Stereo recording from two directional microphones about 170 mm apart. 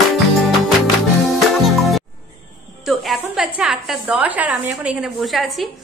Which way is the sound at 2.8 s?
Centre (ahead or behind).